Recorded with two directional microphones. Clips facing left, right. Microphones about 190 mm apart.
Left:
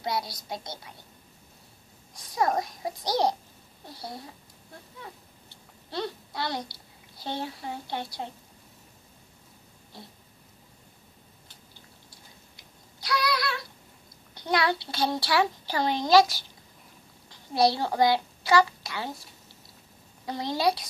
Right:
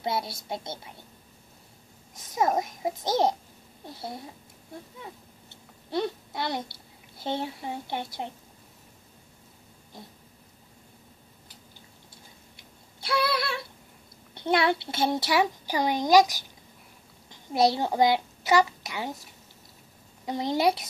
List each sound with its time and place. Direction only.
0.0 s a child's voice: 25° right (ahead or behind)
2.1 s a child's voice: 20° right (ahead or behind)
5.9 s a child's voice: 20° right (ahead or behind)
13.0 s a sound: 25° right (ahead or behind)
14.3 s a child's voice: 25° right (ahead or behind)
20.2 s a child's voice: 20° right (ahead or behind)